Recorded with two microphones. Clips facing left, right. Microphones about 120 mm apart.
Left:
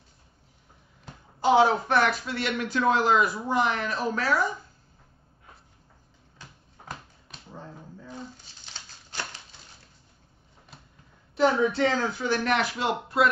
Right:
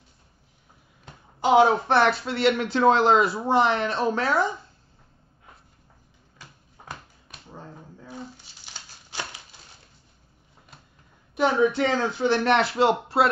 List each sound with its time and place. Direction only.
1.4 s speech: 20° right (ahead or behind)
6.4 s a sound: 5° right (ahead or behind)
11.3 s speech: 15° right (ahead or behind); by 13.3 s 30° right (ahead or behind)